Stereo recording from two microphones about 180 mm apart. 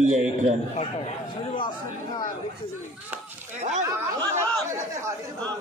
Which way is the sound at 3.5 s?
40° right (ahead or behind).